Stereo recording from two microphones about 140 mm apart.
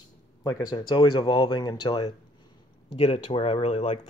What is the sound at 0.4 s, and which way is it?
Speech, 30° left (ahead or behind).